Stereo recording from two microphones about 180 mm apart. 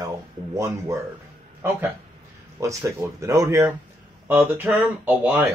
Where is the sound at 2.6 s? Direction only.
15° right (ahead or behind).